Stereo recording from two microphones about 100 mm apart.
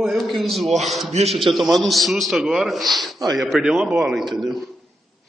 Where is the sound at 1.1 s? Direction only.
90° right.